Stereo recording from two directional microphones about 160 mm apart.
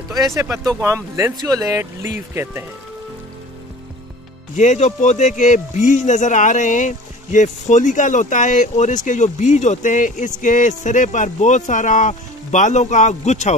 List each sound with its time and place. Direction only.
0.1 s speech: 20° right (ahead or behind)
4.6 s speech: 45° left (ahead or behind)